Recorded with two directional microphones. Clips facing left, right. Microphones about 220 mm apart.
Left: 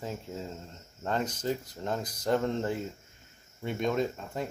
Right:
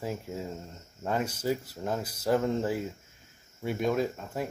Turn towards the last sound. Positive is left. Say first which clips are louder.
# right 1 dB
turn(degrees=-5)  # may be behind; listen again after turning